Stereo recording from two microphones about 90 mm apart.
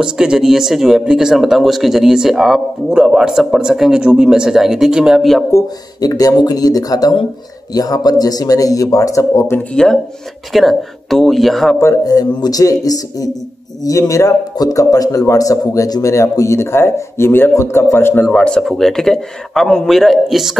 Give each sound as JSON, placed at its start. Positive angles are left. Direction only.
{"t": 0.0, "sound": "speech", "side_deg": -10}
{"t": 5.5, "sound": "a man's voice", "side_deg": 45}
{"t": 9.6, "sound": "speech", "side_deg": 10}
{"t": 12.0, "sound": "a man's voice", "side_deg": 45}